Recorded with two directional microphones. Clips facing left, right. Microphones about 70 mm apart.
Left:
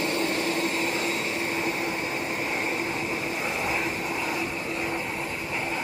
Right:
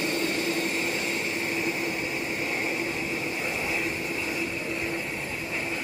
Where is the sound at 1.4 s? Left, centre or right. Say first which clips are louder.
Left 1 dB; left.